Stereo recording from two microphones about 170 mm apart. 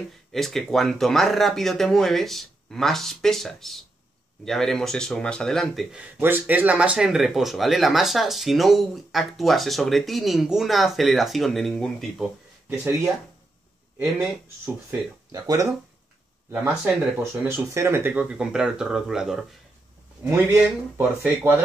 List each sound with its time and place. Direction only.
0.3 s speech: centre (ahead or behind)
12.6 s speech: 15° right (ahead or behind)
14.9 s speech: 20° right (ahead or behind)
16.5 s speech: 10° right (ahead or behind)